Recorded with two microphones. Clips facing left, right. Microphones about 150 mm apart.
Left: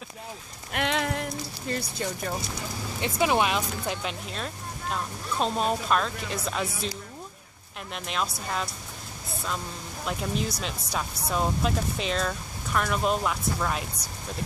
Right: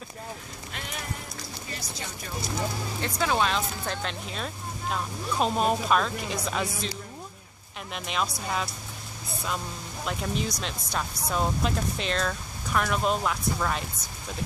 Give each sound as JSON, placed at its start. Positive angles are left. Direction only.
{"t": 0.7, "sound": "rain on surface", "side_deg": 90}
{"t": 1.8, "sound": "speech", "side_deg": 55}
{"t": 3.0, "sound": "speech", "side_deg": 15}
{"t": 7.9, "sound": "speech", "side_deg": 0}
{"t": 10.0, "sound": "speech", "side_deg": 0}